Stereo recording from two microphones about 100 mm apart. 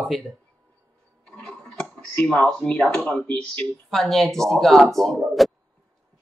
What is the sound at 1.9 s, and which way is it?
Speech, 10° left (ahead or behind).